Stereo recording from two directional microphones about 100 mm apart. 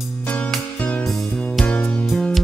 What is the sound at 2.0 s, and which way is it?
Music, centre (ahead or behind).